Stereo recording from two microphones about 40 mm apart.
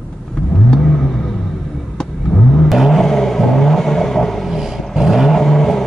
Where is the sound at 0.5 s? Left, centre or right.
Centre.